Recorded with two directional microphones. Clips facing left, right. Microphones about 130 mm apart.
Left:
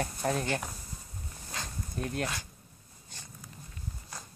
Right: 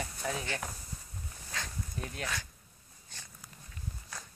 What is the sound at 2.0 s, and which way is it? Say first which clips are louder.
Speech: left 7 dB; 50° left (ahead or behind).